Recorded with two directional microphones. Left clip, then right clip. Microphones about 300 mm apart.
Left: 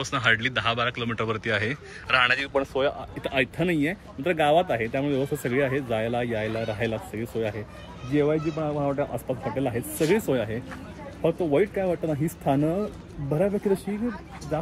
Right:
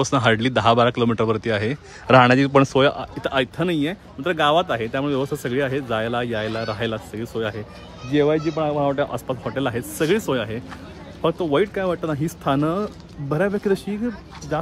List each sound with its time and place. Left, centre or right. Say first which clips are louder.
0.0 s speech: right 4 dB; centre
3.2 s speech: right 4 dB; centre